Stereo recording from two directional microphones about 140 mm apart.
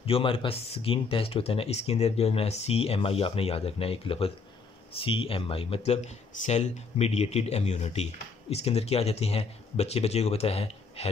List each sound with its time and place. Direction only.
0.0 s speech: 40° left (ahead or behind)